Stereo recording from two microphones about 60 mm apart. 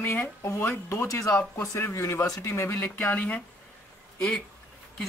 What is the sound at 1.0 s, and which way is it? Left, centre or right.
Speech, left.